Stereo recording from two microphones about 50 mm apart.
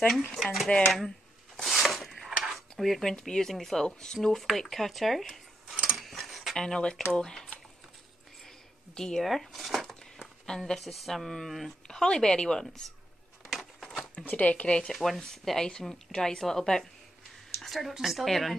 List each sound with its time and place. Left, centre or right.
0.3 s speech: centre
0.7 s speech: left
1.6 s a sound: centre
3.2 s speech: centre
5.9 s a sound: centre
6.5 s speech: centre
8.9 s speech: centre
9.2 s speech: centre
13.5 s a sound: centre
14.2 s speech: left
14.9 s speech: centre
17.6 s a sound: centre
17.9 s speech: centre